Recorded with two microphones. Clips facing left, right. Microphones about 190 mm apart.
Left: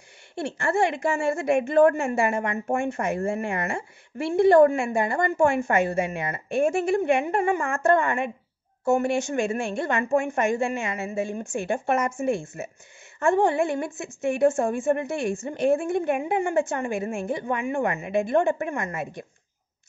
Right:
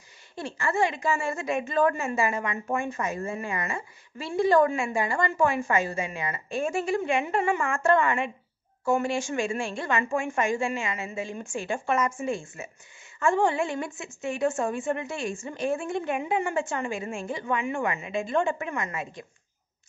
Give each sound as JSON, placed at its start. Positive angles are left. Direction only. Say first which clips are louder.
{"t": 0.4, "sound": "a woman's voice", "louder": "left 3 dB", "side_deg": 65}
{"t": 8.9, "sound": "a woman's voice", "louder": "left 3 dB", "side_deg": 60}